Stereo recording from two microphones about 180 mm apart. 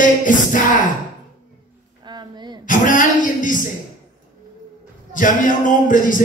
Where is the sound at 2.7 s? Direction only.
45° left (ahead or behind).